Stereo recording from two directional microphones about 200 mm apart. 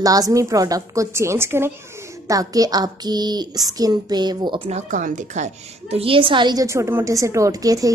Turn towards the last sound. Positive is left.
turn(degrees=-15)  # may be behind; listen again after turning